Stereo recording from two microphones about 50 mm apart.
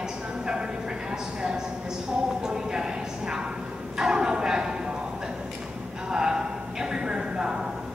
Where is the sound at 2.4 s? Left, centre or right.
Centre.